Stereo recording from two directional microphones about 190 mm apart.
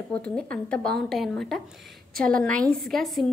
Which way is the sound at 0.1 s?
5° left (ahead or behind).